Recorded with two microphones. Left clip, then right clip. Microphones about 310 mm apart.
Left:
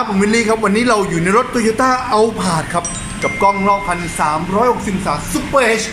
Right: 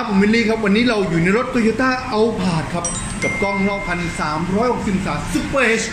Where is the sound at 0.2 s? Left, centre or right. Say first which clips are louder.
Left 3 dB; left.